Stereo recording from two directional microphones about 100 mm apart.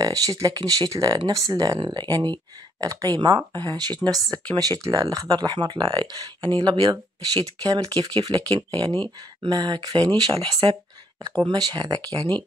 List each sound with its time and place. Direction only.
0.0 s speech: 35° right (ahead or behind)